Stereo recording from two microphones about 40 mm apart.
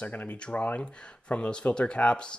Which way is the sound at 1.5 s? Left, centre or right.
Left.